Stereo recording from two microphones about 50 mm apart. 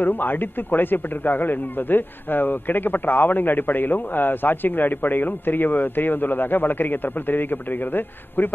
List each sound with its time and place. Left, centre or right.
0.0 s a man's voice: left